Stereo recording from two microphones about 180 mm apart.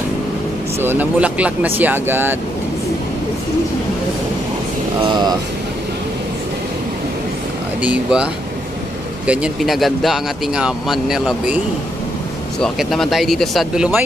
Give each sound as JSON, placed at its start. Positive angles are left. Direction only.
{"t": 0.7, "sound": "speech", "side_deg": -10}
{"t": 5.0, "sound": "speech", "side_deg": -25}
{"t": 7.8, "sound": "speech", "side_deg": -5}
{"t": 12.5, "sound": "speech", "side_deg": 0}